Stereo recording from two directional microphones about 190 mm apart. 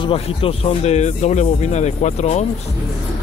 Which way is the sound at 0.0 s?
30° left (ahead or behind).